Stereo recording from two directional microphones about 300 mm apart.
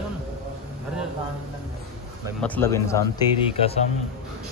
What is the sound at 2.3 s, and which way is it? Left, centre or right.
A man's voice, centre.